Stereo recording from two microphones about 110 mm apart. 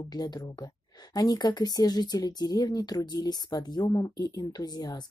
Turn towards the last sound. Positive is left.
turn(degrees=40)  # may be behind; listen again after turning